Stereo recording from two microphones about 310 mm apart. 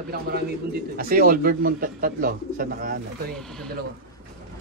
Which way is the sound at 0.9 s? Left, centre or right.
Right.